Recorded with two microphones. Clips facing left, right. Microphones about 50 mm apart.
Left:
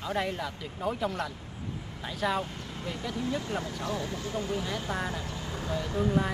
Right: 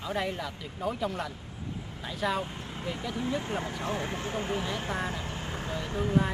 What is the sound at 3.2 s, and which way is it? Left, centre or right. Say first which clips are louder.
Speech: even; right.